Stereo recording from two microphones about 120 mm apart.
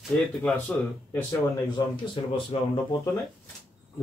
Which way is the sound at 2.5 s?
55° left (ahead or behind).